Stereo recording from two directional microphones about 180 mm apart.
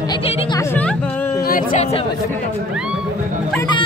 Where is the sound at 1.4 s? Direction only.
50° left (ahead or behind).